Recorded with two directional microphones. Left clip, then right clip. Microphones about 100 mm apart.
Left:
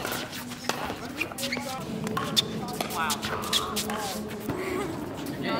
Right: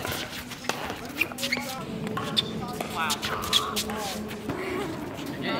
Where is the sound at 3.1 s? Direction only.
5° left (ahead or behind).